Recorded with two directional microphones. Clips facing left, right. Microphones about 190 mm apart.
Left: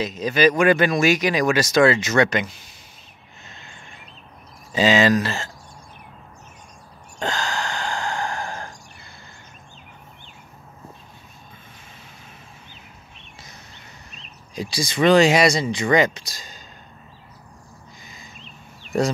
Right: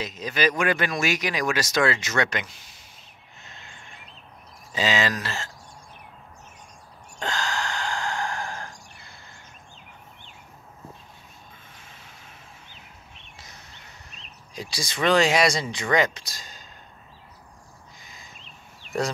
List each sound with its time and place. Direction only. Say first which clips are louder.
0.0 s speech: left 7 dB; 25° left (ahead or behind)
4.7 s speech: left 8 dB; 25° left (ahead or behind)
7.2 s gasp: left 3 dB; 25° left (ahead or behind)
14.5 s speech: left 7 dB; centre (ahead or behind)